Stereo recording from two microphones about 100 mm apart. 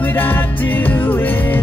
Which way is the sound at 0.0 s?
20° left (ahead or behind).